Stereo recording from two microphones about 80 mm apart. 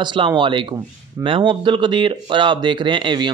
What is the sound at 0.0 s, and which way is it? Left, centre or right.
Speech, right.